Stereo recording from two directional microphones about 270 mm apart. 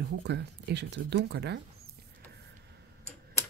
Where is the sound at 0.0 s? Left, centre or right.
Right.